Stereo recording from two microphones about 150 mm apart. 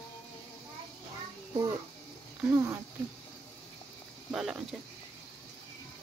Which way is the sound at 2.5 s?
20° right (ahead or behind).